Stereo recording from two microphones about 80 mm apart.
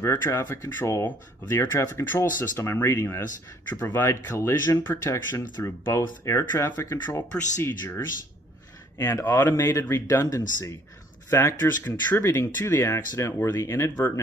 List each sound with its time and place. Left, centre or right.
0.0 s speech: left
4.9 s speech: left
5.3 s speech: left
8.9 s speech: left
11.2 s speech: left